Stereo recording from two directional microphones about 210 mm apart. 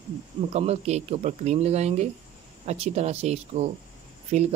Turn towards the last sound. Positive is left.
turn(degrees=-35)  # may be behind; listen again after turning